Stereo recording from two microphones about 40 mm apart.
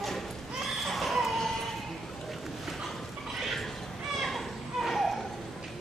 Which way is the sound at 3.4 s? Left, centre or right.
Centre.